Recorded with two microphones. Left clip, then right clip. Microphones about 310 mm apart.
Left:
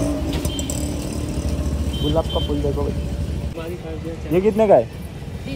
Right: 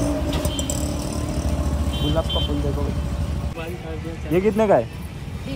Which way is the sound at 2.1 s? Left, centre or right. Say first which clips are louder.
Left 3 dB; centre.